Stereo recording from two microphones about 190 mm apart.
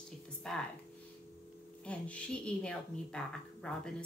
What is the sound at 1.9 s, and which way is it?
A woman's voice, 5° left (ahead or behind).